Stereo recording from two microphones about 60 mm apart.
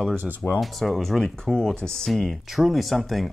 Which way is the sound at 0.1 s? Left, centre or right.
Right.